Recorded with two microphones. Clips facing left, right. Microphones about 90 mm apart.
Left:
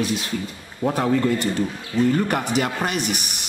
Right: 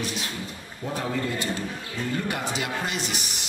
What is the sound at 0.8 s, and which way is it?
A man's voice, 65° left (ahead or behind).